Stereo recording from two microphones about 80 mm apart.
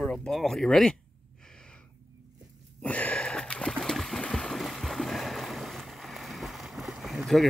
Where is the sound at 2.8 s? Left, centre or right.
Centre.